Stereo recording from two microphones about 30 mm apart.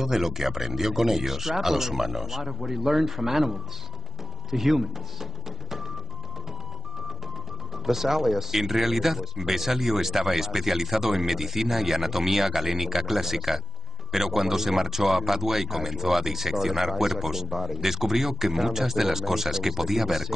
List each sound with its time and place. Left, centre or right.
0.0 s speech: centre
7.7 s speech: centre